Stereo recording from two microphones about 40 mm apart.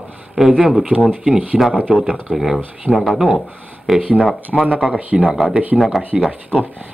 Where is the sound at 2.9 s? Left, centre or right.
Left.